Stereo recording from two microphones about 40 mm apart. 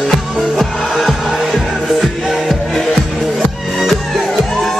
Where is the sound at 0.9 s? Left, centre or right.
Centre.